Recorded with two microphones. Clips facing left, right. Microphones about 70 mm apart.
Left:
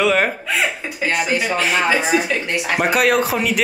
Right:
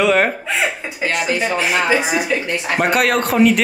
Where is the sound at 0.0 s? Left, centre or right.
Centre.